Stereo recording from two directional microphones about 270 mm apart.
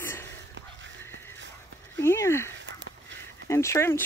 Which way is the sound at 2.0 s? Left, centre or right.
Centre.